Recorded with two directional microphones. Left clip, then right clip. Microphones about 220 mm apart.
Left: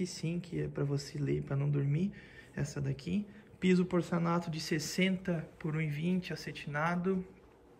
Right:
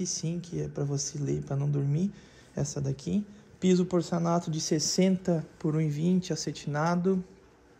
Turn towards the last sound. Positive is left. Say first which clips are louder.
# right 5 dB
turn(degrees=-20)  # may be behind; listen again after turning